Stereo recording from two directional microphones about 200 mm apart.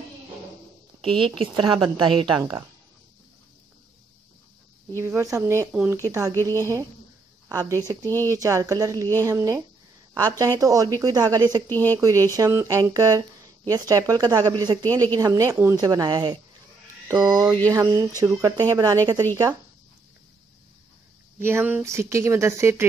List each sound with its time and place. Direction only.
1.0 s speech: 25° right (ahead or behind)
4.9 s speech: 15° right (ahead or behind)
7.4 s speech: 15° right (ahead or behind)
11.7 s speech: 10° left (ahead or behind)
12.0 s speech: 15° right (ahead or behind)
21.4 s speech: 10° right (ahead or behind)